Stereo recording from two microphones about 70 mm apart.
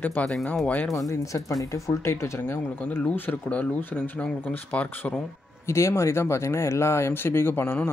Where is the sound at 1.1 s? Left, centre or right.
Left.